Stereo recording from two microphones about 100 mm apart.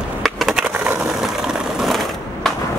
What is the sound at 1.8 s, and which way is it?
Mechanisms, centre (ahead or behind).